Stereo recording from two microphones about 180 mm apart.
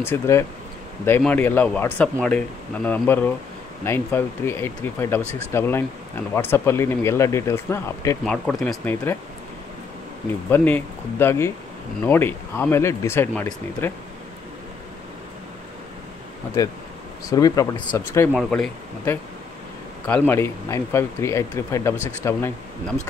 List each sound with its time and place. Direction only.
0.0 s speech: 15° left (ahead or behind)
8.3 s speech: 5° left (ahead or behind)
10.5 s speech: 10° left (ahead or behind)
17.3 s speech: 20° left (ahead or behind)